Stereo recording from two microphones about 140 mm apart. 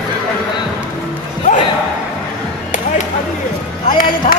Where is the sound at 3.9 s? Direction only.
85° left.